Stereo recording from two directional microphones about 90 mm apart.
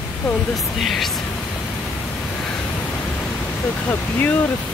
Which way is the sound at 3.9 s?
20° left (ahead or behind).